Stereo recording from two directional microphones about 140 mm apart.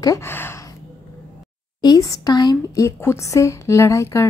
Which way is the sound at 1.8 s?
25° left (ahead or behind).